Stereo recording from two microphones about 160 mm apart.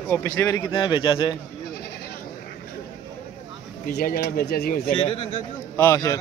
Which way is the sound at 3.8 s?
75° left (ahead or behind).